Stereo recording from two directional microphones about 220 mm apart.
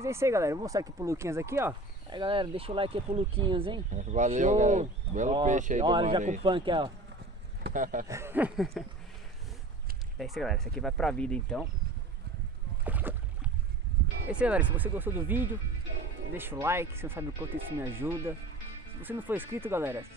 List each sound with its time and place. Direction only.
0.0 s speech: 10° right (ahead or behind); by 6.4 s 35° right (ahead or behind)
6.4 s speech: 20° right (ahead or behind)
7.6 s speech: 35° right (ahead or behind)
8.1 s speech: 10° right (ahead or behind)
10.1 s speech: centre (ahead or behind)
12.8 s boat: 10° right (ahead or behind)
14.3 s speech: 5° right (ahead or behind)